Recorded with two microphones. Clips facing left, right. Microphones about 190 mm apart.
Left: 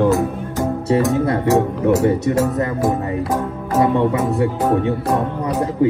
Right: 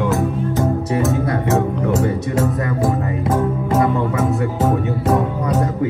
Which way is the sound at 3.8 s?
30° left (ahead or behind).